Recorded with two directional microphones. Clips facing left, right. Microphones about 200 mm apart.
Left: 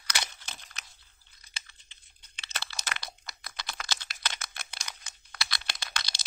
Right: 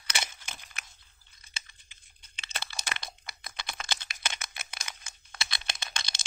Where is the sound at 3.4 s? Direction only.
20° right (ahead or behind).